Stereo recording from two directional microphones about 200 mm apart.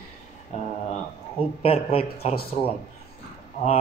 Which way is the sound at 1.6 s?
30° left (ahead or behind).